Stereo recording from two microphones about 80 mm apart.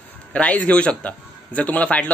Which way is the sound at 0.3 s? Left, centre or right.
Centre.